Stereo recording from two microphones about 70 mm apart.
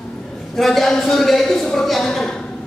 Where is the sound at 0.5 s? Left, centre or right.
Centre.